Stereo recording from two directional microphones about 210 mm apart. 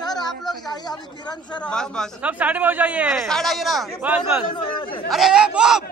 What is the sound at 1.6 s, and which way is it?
Speech, 5° left (ahead or behind).